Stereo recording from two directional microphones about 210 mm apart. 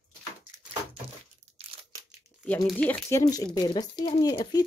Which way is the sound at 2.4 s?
5° left (ahead or behind).